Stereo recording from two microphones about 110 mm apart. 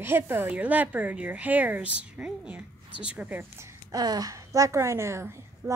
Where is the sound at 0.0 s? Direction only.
20° right (ahead or behind).